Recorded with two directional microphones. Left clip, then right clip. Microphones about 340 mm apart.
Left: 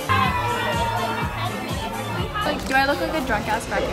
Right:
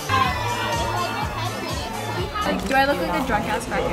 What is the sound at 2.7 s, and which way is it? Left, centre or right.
Speech, centre.